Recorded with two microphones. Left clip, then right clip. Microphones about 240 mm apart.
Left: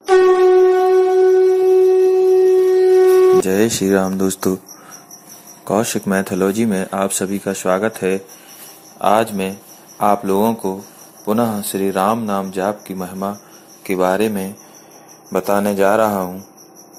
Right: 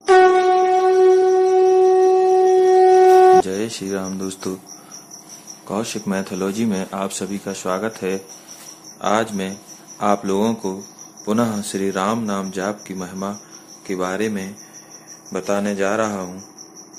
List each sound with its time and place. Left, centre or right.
0.0 s shofar: centre
3.4 s speech: left
5.7 s speech: left